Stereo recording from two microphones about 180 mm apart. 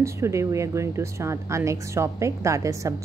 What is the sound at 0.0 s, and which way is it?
A woman's voice, 15° right (ahead or behind).